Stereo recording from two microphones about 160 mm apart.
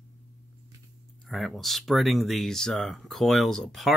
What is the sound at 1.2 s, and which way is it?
Speech, centre (ahead or behind).